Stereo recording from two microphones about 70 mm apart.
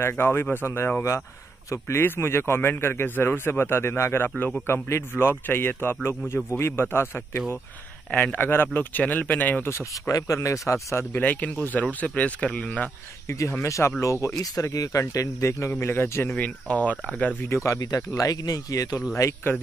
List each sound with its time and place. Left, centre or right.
0.2 s a man's voice: left
9.7 s a man's voice: left
10.1 s speech: left
11.1 s speech: left
13.3 s speech: left
14.4 s speech: left
15.7 s a man's voice: left
16.3 s speech: left
17.6 s speech: left